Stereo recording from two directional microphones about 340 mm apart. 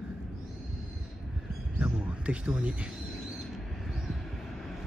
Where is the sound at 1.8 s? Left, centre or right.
Centre.